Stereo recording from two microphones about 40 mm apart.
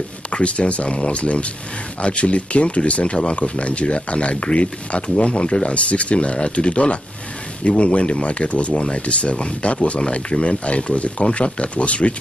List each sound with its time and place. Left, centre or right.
0.3 s speech: left